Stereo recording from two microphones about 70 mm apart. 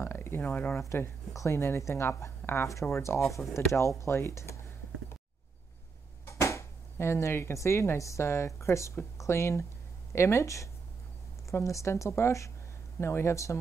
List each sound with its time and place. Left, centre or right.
0.0 s speech: left
0.7 s a woman's voice: left
6.2 s a woman's voice: left